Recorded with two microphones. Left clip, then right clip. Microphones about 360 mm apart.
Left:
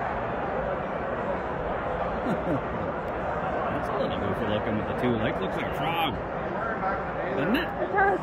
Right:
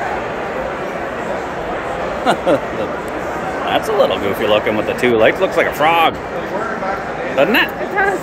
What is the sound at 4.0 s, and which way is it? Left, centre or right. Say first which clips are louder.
Speech: right 13 dB; centre.